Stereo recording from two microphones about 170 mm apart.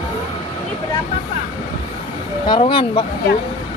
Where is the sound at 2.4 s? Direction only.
30° left (ahead or behind).